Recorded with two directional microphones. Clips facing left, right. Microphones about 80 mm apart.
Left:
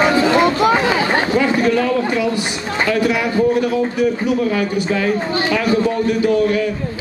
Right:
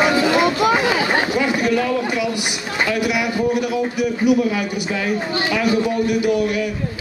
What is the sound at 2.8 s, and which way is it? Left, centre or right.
A man's voice, centre.